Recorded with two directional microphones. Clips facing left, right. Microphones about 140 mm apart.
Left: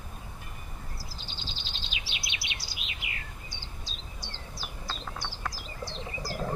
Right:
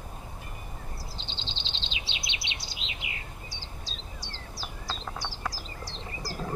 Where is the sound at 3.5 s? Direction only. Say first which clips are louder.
Right 2 dB; 35° right (ahead or behind).